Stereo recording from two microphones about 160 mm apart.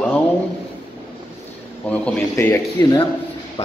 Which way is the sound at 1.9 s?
10° left (ahead or behind).